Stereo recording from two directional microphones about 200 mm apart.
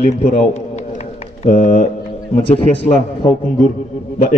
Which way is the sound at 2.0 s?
30° left (ahead or behind).